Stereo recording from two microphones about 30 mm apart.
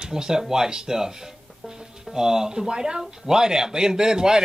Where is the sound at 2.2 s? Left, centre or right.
Centre.